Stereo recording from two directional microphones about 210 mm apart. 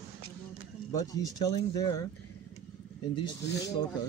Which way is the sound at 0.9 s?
15° left (ahead or behind).